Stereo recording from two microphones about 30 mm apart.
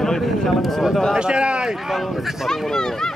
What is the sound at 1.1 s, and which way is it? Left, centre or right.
Speech, right.